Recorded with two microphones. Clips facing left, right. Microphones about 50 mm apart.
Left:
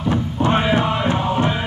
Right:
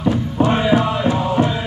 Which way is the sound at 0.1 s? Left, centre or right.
Left.